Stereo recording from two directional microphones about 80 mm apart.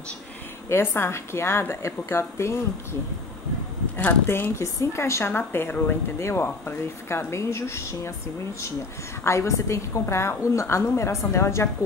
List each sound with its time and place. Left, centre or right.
0.7 s a woman's voice: left
4.3 s a woman's voice: left
9.2 s a woman's voice: left